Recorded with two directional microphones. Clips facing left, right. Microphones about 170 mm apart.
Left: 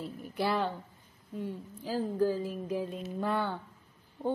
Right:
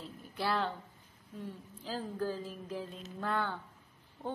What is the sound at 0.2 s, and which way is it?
Speech, 15° left (ahead or behind).